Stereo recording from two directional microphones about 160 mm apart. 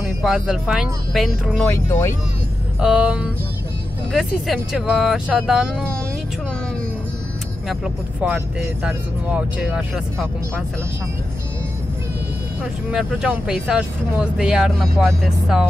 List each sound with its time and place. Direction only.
0.2 s speech: 5° right (ahead or behind)
1.6 s speech: 15° left (ahead or behind)
2.8 s speech: 5° right (ahead or behind)
7.6 s speech: 5° right (ahead or behind)
13.3 s speech: 5° right (ahead or behind)